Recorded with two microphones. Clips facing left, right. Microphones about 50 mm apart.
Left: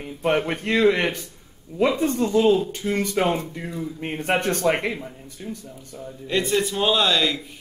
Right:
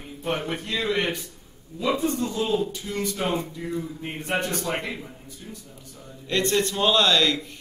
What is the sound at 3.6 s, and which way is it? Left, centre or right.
Speech, left.